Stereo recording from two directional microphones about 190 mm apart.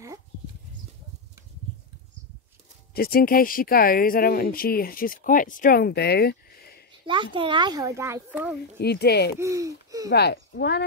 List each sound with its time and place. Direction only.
2.9 s speech: 50° left (ahead or behind)
7.3 s a child's voice: 25° right (ahead or behind); by 8.5 s 10° right (ahead or behind)
8.7 s speech: 60° left (ahead or behind)
9.4 s a child's voice: 15° right (ahead or behind)
10.1 s speech: 60° left (ahead or behind)